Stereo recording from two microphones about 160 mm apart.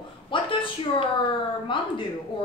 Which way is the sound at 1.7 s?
30° left (ahead or behind).